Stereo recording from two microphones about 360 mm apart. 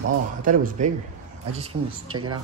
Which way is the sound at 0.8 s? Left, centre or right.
Right.